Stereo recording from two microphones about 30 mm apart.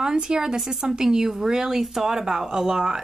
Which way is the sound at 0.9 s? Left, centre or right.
Right.